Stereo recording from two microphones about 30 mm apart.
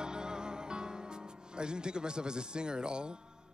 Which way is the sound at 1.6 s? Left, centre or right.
Right.